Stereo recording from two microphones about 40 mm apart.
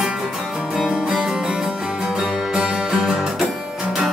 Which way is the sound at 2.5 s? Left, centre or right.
Right.